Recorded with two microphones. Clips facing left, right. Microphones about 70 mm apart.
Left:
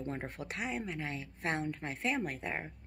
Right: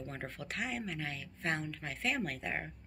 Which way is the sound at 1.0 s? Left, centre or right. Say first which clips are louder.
Left 1 dB; left.